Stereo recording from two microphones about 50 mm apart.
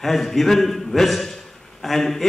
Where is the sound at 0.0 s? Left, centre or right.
Centre.